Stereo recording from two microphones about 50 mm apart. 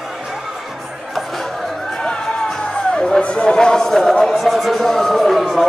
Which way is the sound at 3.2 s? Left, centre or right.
Left.